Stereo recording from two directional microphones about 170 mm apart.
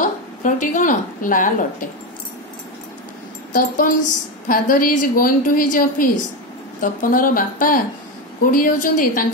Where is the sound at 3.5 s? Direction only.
50° left (ahead or behind).